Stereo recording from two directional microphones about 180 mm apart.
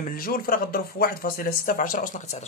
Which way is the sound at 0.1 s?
55° left (ahead or behind).